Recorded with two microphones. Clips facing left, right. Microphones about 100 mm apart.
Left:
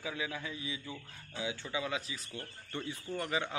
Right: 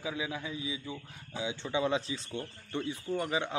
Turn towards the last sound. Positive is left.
turn(degrees=-20)  # may be behind; listen again after turning